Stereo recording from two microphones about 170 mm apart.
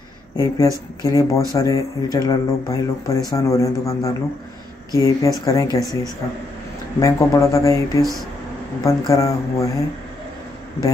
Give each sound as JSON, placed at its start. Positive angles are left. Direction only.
{"t": 0.4, "sound": "a man's voice", "side_deg": 20}
{"t": 7.0, "sound": "a man's voice", "side_deg": 20}